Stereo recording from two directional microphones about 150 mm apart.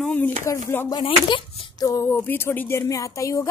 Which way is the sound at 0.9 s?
35° left (ahead or behind).